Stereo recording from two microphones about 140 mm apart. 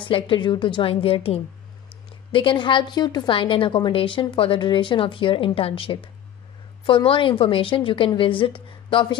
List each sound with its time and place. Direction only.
0.0 s a woman's voice: 35° left (ahead or behind)